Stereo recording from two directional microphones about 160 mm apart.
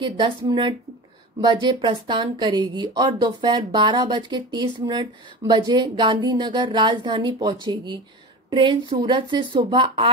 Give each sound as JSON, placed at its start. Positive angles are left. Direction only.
{"t": 0.0, "sound": "speech", "side_deg": -30}